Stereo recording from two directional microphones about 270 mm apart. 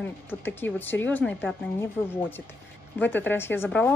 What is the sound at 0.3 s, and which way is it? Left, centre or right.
A woman's voice, centre.